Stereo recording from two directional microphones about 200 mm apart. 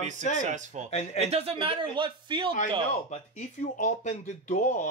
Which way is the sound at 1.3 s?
30° right (ahead or behind).